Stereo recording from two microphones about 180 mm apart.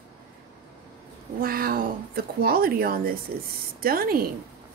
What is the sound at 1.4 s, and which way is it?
A woman's voice, 55° right (ahead or behind).